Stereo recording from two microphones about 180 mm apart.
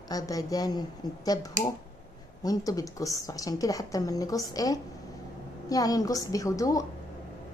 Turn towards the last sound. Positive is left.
turn(degrees=20)  # may be behind; listen again after turning